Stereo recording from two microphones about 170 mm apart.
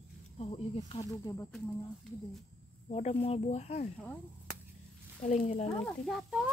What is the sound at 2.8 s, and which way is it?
Speech, 40° left (ahead or behind).